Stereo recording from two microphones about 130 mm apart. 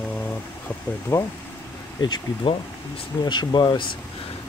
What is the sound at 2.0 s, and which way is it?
Speech, 35° left (ahead or behind).